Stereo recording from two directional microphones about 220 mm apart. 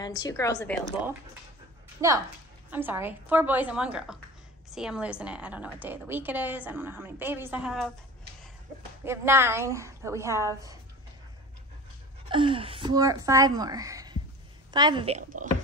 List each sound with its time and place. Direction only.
0.0 s a woman's voice: 15° left (ahead or behind)
2.0 s a woman's voice: 15° right (ahead or behind)
9.0 s a woman's voice: 10° right (ahead or behind)
12.3 s a woman's voice: 25° right (ahead or behind)